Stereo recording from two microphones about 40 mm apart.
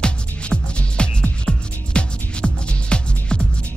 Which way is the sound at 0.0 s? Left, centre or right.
Left.